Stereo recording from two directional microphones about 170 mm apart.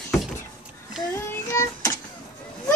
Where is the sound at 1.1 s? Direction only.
15° left (ahead or behind).